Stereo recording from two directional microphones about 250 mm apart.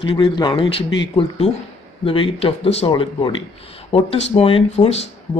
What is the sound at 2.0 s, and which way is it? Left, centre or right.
Speech, left.